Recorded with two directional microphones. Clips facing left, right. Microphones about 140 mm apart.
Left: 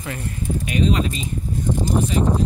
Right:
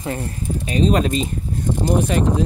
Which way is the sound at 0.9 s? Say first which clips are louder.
Right 4 dB; 50° right (ahead or behind).